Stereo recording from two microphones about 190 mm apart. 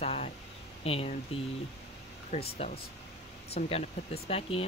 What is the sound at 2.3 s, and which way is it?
Speech, 35° left (ahead or behind).